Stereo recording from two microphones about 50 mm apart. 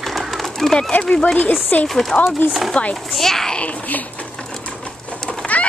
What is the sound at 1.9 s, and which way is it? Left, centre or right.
Speech, centre.